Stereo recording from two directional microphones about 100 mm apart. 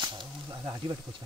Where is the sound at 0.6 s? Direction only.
35° right (ahead or behind).